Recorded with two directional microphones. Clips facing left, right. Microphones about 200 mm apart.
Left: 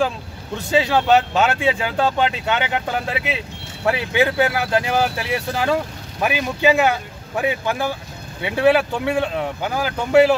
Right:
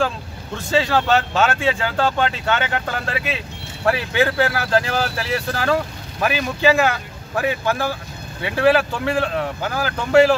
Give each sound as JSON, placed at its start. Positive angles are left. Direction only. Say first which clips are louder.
{"t": 0.7, "sound": "speech", "louder": "left 2 dB", "side_deg": 15}